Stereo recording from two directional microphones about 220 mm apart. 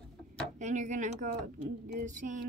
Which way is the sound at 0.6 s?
35° right (ahead or behind).